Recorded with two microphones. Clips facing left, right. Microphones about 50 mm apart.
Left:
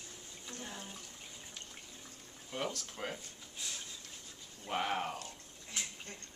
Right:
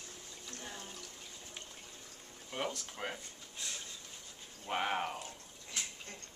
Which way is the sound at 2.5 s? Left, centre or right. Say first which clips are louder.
Even; centre.